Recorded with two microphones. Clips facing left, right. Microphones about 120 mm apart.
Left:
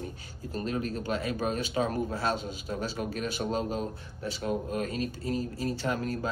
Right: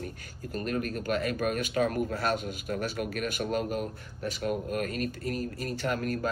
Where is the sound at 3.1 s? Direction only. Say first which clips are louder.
Even; 60° right (ahead or behind).